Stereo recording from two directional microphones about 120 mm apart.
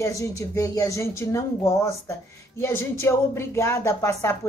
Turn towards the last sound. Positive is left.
turn(degrees=25)  # may be behind; listen again after turning